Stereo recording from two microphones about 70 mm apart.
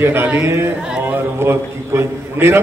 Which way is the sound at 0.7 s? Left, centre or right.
Centre.